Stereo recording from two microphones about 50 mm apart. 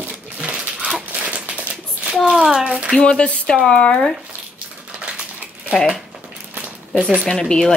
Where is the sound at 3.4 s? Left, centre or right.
Centre.